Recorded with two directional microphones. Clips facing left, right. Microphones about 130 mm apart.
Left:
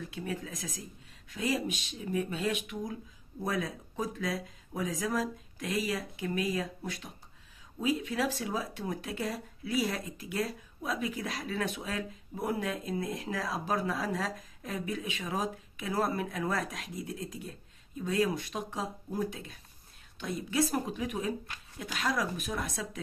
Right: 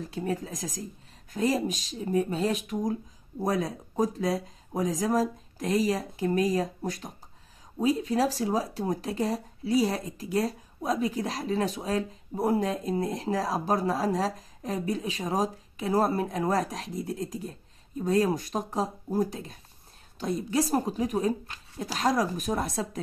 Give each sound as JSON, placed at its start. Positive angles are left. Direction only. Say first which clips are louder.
{"t": 0.0, "sound": "speech", "louder": "right 6 dB", "side_deg": -40}